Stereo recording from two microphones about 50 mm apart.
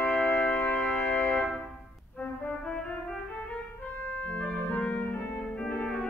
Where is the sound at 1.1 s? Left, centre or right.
Left.